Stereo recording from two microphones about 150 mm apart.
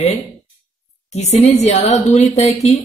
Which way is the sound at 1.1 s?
45° left (ahead or behind).